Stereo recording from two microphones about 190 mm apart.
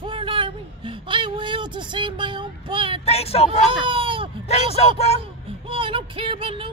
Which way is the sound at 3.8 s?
25° right (ahead or behind).